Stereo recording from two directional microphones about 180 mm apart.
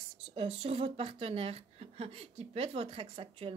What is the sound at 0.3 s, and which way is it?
A woman's voice, 30° right (ahead or behind).